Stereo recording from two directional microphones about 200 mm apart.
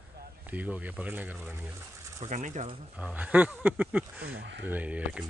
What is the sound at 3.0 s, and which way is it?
Speech, 5° right (ahead or behind).